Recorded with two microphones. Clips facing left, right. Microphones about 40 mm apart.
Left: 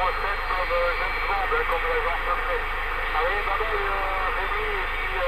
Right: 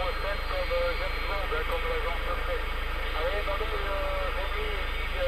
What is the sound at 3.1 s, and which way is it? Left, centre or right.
Radio, left.